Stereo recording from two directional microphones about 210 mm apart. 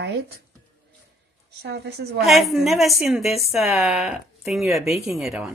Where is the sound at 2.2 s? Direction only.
Centre (ahead or behind).